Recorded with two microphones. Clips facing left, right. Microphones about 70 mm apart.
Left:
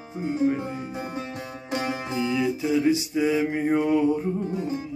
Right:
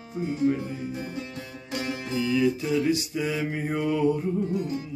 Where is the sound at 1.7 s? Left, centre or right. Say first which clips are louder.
Left 2 dB; left.